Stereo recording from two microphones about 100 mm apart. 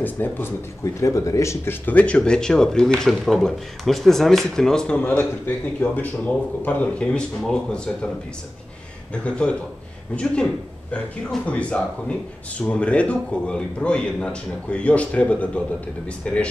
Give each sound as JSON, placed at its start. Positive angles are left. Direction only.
{"t": 0.0, "sound": "speech", "side_deg": 20}
{"t": 0.8, "sound": "speech", "side_deg": 30}
{"t": 9.1, "sound": "speech", "side_deg": 10}